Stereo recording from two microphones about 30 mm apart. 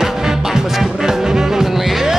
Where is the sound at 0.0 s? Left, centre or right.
Centre.